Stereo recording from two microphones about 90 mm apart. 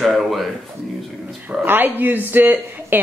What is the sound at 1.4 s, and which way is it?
A woman's voice, 20° right (ahead or behind).